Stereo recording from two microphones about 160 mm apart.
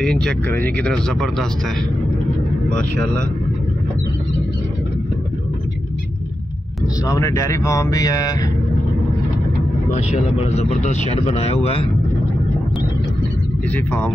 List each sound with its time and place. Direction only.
0.0 s speech: 5° left (ahead or behind)
7.1 s speech: 20° left (ahead or behind)
10.5 s speech: 45° left (ahead or behind)
13.7 s speech: 10° left (ahead or behind)